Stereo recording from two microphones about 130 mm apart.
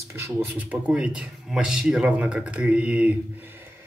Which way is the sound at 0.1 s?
10° right (ahead or behind).